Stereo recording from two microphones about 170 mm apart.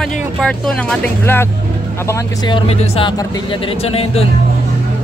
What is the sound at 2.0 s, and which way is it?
Speech, 25° left (ahead or behind).